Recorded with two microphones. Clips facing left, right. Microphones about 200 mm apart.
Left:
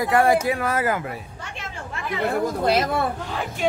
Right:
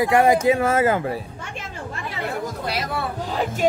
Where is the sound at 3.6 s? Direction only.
40° right (ahead or behind).